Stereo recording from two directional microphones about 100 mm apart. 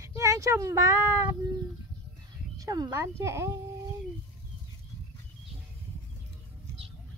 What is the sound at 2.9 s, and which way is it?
Speech, 30° right (ahead or behind).